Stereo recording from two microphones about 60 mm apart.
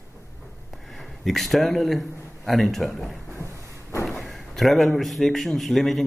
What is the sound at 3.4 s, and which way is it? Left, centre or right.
Vehicle, left.